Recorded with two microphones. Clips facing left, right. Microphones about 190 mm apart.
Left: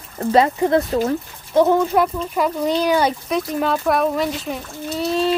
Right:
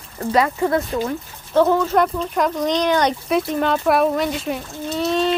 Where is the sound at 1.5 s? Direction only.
15° left (ahead or behind).